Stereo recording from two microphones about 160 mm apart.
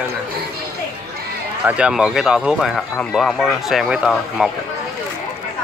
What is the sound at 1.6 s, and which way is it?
Speech, 5° right (ahead or behind).